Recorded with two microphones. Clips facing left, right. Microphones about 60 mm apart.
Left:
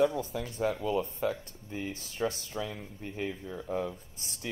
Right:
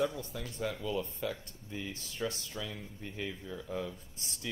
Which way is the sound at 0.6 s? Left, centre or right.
Left.